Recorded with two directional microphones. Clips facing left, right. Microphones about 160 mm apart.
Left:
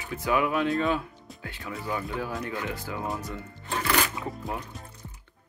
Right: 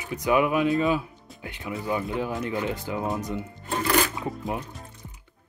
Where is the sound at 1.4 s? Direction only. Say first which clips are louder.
Right 4 dB; 20° right (ahead or behind).